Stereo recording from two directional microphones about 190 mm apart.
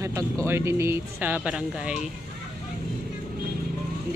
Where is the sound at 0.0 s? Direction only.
15° right (ahead or behind).